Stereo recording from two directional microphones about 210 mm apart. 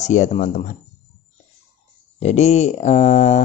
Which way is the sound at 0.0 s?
35° left (ahead or behind).